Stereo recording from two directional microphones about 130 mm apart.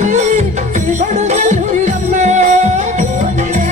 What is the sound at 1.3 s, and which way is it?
Music, 70° right (ahead or behind).